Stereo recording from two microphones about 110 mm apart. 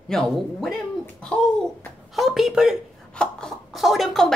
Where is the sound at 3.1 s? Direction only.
5° left (ahead or behind).